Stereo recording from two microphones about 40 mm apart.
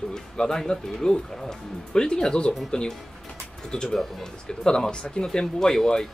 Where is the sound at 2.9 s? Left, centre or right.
Centre.